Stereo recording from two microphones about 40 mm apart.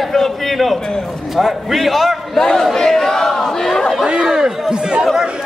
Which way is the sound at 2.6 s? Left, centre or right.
Centre.